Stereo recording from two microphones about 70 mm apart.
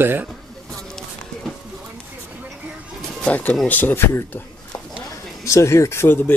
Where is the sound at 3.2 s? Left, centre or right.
Left.